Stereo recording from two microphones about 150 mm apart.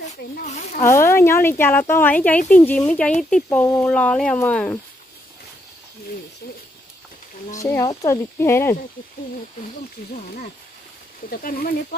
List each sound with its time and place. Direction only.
0.0 s speech: 50° left (ahead or behind)
0.7 s speech: 20° left (ahead or behind)
3.4 s speech: 20° left (ahead or behind)
3.8 s speech: 10° left (ahead or behind)
7.5 s speech: 20° left (ahead or behind)
10.2 s speech: 90° left